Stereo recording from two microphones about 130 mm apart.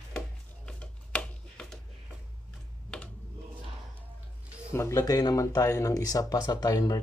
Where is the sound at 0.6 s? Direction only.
10° left (ahead or behind).